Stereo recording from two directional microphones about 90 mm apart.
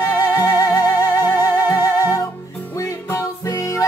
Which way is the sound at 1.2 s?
25° right (ahead or behind).